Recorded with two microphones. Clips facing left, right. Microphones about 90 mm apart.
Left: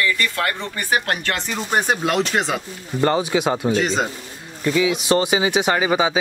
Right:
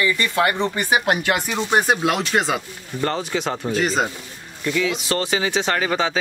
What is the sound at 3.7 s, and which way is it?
Speech, centre (ahead or behind).